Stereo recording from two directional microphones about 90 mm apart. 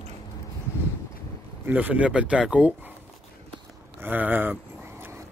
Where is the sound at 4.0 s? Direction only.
20° right (ahead or behind).